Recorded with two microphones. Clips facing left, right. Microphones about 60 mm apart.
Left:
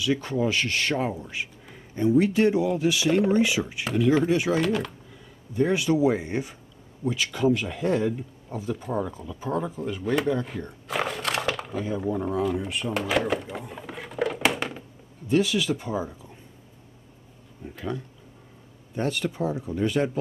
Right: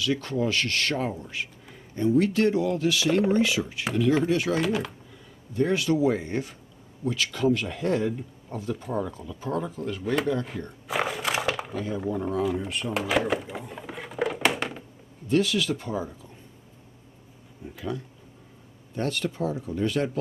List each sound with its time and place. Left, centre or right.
0.0 s speech: centre
4.6 s speech: centre
5.5 s speech: centre
10.0 s a sound: centre
11.7 s speech: centre
12.2 s a sound: centre
15.2 s speech: centre
17.7 s speech: centre
18.9 s speech: centre